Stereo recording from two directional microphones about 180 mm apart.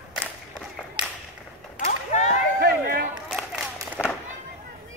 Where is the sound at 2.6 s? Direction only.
55° right (ahead or behind).